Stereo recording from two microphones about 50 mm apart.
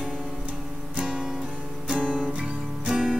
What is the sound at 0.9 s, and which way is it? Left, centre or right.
Guitar, centre.